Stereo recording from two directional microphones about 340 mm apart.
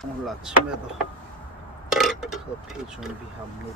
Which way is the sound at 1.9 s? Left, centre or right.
Centre.